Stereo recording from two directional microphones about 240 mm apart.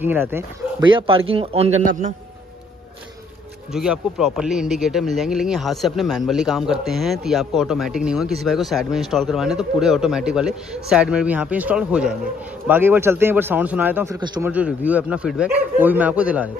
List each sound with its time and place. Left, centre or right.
0.0 s speech: centre; by 1.8 s right
3.7 s a man's voice: centre
14.5 s speech: centre